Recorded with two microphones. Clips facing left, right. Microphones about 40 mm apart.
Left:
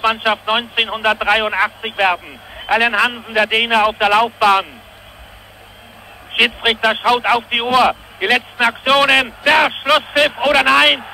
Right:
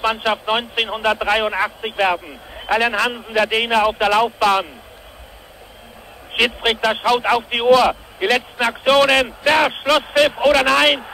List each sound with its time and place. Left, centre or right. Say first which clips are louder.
0.0 s speech: left 3 dB; left
6.3 s speech: left 3 dB; left